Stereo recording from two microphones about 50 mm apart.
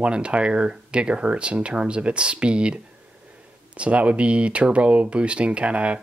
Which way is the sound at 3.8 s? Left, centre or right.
Right.